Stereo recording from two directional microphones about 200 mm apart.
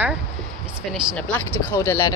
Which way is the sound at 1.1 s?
10° left (ahead or behind).